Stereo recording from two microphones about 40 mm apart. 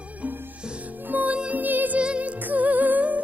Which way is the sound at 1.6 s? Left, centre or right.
Right.